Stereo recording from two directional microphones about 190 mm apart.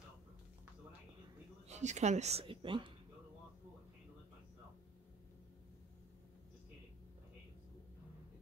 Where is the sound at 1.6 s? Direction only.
35° right (ahead or behind).